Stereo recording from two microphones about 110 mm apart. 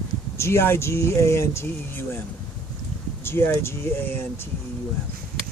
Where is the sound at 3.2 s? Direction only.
20° left (ahead or behind).